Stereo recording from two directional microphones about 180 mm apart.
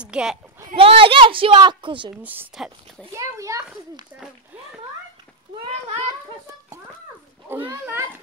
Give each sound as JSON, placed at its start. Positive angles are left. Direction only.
{"t": 0.0, "sound": "speech", "side_deg": -5}
{"t": 0.7, "sound": "a child's voice", "side_deg": -30}
{"t": 2.2, "sound": "speech", "side_deg": -5}
{"t": 3.1, "sound": "a child's voice", "side_deg": -15}
{"t": 7.4, "sound": "a child's voice", "side_deg": -10}